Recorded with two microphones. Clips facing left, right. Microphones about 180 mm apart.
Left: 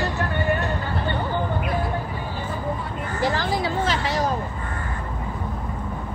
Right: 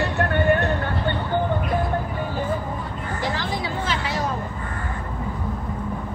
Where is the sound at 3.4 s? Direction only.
40° left (ahead or behind).